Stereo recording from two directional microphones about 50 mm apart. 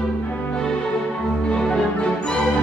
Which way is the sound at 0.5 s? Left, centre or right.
Centre.